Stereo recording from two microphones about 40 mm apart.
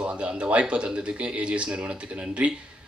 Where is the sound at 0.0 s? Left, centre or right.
Right.